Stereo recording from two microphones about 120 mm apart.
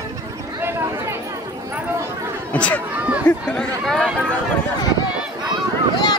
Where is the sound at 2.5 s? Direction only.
10° left (ahead or behind).